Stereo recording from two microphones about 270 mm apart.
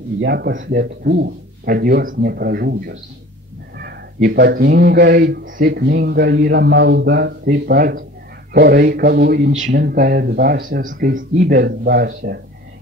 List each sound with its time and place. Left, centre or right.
0.2 s speech: right